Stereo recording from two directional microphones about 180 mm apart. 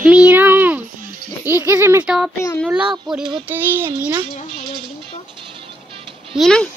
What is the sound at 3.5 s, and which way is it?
Child singing, 10° right (ahead or behind).